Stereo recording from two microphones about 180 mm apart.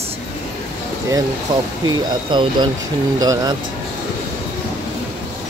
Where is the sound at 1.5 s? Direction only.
20° right (ahead or behind).